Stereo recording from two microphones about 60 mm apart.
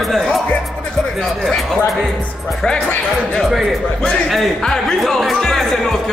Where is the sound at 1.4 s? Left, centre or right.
Centre.